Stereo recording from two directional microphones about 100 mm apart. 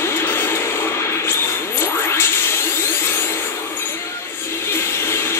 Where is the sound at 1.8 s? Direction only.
25° left (ahead or behind).